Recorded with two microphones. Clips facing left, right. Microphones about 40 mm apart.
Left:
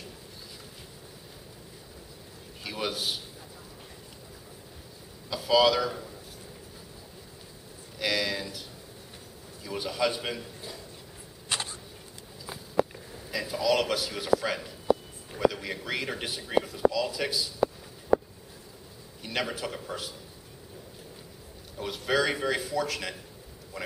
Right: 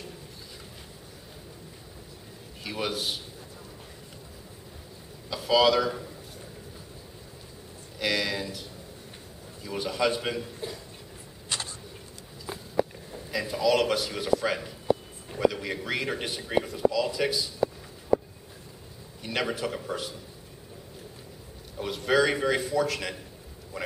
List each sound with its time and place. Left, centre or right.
2.6 s a man's voice: centre
5.3 s speech: centre
8.0 s a man's voice: centre
11.4 s vehicle: left
12.5 s a sound: centre
13.1 s a man's voice: centre
19.2 s a man's voice: centre
21.7 s a man's voice: centre